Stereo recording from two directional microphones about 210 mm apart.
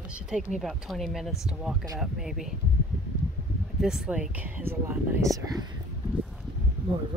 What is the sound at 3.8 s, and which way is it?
Speech, centre (ahead or behind).